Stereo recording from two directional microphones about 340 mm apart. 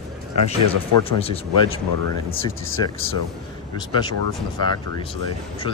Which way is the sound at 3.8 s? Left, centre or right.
Centre.